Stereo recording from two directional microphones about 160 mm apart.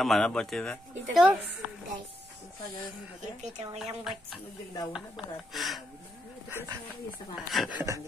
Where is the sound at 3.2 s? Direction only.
45° right (ahead or behind).